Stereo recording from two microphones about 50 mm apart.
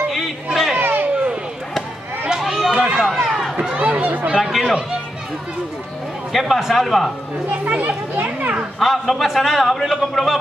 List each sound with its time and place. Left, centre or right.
0.5 s children playing: centre
0.7 s children playing: right
2.4 s run: centre
3.5 s speech: right
4.4 s a man's voice: centre
6.3 s a man's voice: centre
7.6 s a child's voice: right
8.7 s a man's voice: centre